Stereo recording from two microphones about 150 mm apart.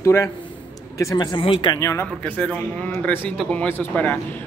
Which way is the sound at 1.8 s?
20° left (ahead or behind).